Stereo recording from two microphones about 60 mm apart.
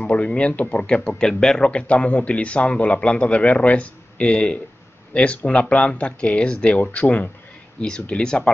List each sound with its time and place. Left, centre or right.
0.0 s speech: left
7.8 s speech: centre